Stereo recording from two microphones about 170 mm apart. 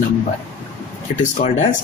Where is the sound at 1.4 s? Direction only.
55° left (ahead or behind).